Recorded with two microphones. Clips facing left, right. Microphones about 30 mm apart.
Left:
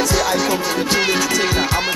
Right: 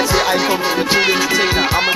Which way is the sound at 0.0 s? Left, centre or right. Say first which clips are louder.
Right 2 dB; right.